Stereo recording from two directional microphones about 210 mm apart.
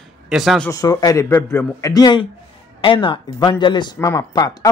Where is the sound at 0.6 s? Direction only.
15° left (ahead or behind).